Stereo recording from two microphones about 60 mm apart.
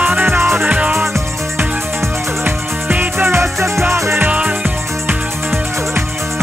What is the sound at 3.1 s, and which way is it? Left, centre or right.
Music, right.